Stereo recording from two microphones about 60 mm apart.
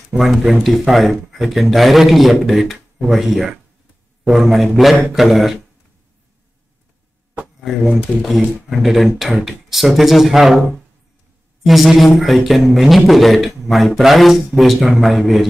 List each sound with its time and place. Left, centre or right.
0.2 s a man's voice: centre
7.6 s a man's voice: centre